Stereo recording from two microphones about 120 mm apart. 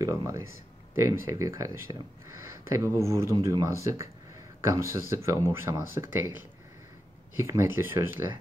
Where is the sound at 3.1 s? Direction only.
25° right (ahead or behind).